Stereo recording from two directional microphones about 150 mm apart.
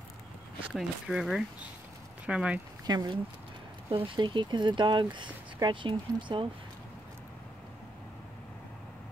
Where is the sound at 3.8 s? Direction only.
35° right (ahead or behind).